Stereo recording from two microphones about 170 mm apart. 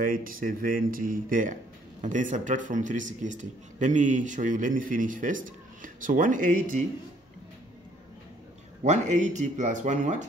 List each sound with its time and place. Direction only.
0.0 s speech: 55° right (ahead or behind)
8.8 s speech: 45° right (ahead or behind)